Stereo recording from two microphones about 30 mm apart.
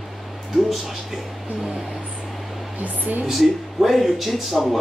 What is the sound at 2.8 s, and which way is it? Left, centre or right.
Speech, right.